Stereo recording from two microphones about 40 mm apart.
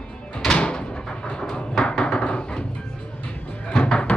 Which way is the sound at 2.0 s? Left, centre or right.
Left.